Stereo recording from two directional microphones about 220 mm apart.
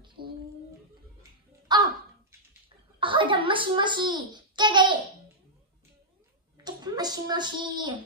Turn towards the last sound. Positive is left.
turn(degrees=-20)  # may be behind; listen again after turning